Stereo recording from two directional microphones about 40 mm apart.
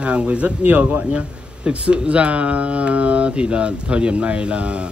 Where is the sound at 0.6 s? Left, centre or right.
Right.